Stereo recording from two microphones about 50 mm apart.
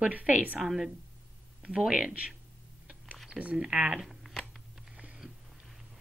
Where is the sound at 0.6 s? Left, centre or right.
Centre.